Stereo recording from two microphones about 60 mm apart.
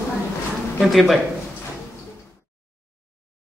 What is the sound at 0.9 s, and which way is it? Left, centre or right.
Speech, centre.